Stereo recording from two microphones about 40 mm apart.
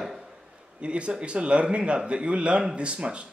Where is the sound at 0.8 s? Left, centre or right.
Right.